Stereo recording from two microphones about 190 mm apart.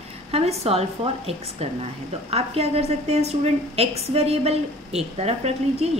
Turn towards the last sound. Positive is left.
turn(degrees=-35)  # may be behind; listen again after turning